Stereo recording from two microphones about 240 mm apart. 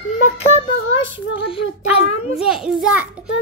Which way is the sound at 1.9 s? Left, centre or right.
Centre.